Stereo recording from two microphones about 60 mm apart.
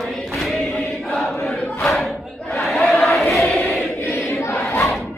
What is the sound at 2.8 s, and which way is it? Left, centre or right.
Crowd, centre.